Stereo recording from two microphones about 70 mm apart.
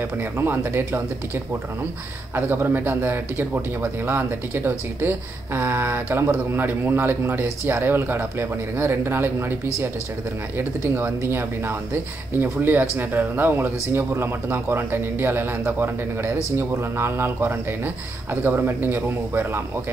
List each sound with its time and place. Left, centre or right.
0.2 s speech: right
10.6 s speech: right